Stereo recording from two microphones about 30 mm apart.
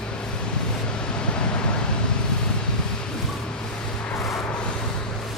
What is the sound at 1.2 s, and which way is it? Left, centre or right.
Vehicle, left.